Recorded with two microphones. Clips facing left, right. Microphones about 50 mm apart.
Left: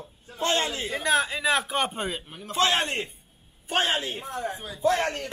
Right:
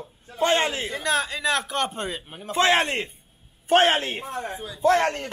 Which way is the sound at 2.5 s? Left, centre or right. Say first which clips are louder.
Right 4 dB; right.